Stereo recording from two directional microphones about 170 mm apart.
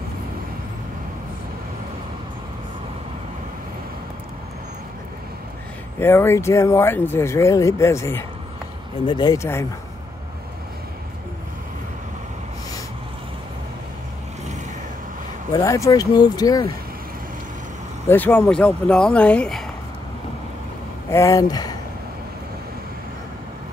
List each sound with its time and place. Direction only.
5.9 s speech: 15° left (ahead or behind)
15.5 s speech: 20° left (ahead or behind)
18.0 s speech: 10° left (ahead or behind)
21.1 s speech: 20° left (ahead or behind)